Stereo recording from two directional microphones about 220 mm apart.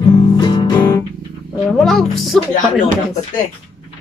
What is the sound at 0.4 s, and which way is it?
Guitar, 20° left (ahead or behind).